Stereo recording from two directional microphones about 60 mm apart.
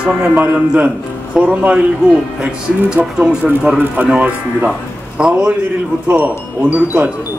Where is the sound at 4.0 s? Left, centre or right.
Right.